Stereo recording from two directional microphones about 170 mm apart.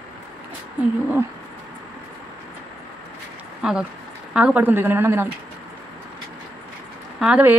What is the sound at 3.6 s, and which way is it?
Speech, 5° right (ahead or behind).